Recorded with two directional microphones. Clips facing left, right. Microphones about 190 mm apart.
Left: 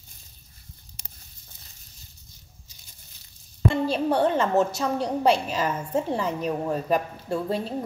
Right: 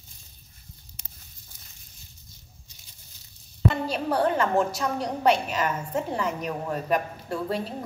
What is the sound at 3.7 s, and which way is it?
A woman's voice, 30° left (ahead or behind).